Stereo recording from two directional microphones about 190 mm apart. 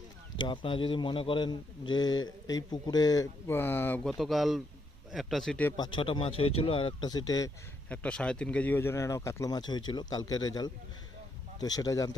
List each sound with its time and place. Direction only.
0.5 s a man's voice: 25° left (ahead or behind); by 5.8 s 5° left (ahead or behind)
5.8 s a man's voice: 25° left (ahead or behind)
7.9 s a man's voice: 5° left (ahead or behind)